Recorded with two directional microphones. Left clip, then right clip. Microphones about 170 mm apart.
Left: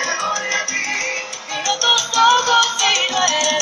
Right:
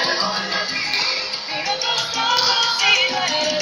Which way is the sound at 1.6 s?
35° left (ahead or behind).